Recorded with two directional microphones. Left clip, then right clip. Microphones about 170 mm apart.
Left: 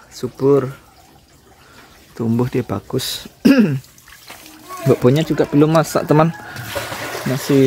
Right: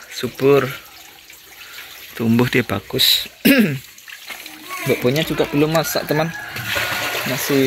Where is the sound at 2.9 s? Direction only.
40° left (ahead or behind).